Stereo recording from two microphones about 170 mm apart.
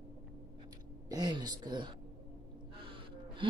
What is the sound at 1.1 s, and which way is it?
Speech, 25° right (ahead or behind).